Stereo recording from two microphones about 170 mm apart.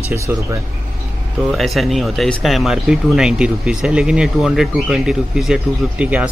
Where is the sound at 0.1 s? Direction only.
15° right (ahead or behind).